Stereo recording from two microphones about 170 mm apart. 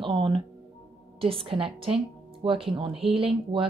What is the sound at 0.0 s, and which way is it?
Music, 30° right (ahead or behind).